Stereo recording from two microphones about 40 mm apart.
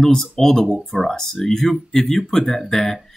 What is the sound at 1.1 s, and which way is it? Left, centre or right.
Speech, centre.